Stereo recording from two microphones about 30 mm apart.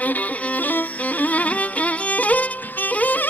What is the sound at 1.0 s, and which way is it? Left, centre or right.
Music, left.